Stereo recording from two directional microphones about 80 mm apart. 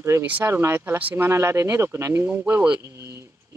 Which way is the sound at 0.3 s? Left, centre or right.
Right.